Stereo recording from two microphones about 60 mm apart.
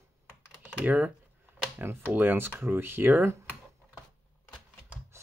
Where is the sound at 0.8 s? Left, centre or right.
Right.